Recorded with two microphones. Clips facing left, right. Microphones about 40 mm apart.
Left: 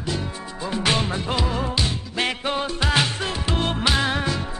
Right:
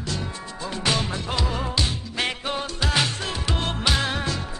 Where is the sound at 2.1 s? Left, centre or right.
Left.